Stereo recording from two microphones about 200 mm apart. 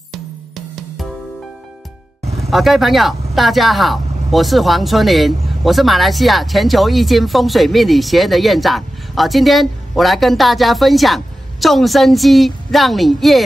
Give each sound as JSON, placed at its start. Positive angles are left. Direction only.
{"t": 2.2, "sound": "music", "side_deg": -30}
{"t": 2.5, "sound": "speech", "side_deg": 0}